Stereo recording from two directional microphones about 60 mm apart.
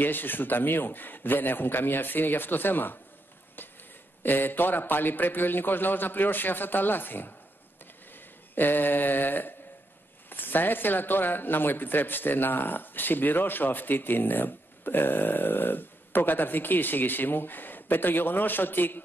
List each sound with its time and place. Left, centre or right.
0.0 s speech: left
4.2 s speech: left
8.5 s speech: left